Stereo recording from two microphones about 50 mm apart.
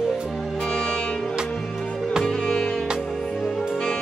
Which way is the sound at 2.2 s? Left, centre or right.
Centre.